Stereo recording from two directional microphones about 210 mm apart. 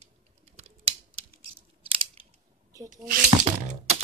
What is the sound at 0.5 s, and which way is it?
Computer keyboard, 30° right (ahead or behind).